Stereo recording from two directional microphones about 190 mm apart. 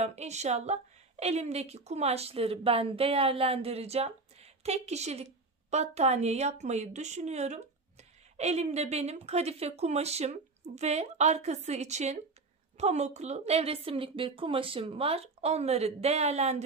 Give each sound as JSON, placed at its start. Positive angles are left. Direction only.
{"t": 0.0, "sound": "a woman's voice", "side_deg": -35}